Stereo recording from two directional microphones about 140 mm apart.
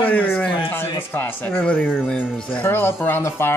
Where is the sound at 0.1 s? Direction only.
10° left (ahead or behind).